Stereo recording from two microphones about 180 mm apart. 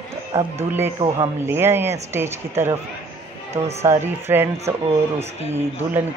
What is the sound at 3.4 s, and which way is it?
Speech, 35° right (ahead or behind).